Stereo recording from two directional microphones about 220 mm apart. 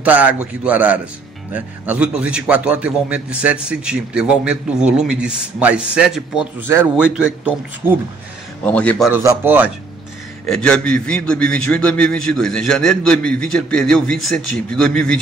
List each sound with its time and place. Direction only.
0.0 s a man's voice: 5° right (ahead or behind)
7.8 s speech: 15° left (ahead or behind)
8.6 s a man's voice: 5° left (ahead or behind)
9.1 s a man's voice: 10° right (ahead or behind)
10.4 s a man's voice: 5° left (ahead or behind)